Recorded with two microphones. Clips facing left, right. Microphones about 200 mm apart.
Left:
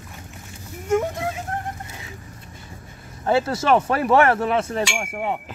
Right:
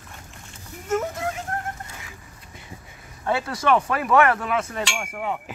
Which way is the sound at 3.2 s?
25° left (ahead or behind).